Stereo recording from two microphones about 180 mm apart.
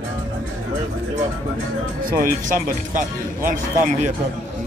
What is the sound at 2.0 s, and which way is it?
Speech, 50° right (ahead or behind).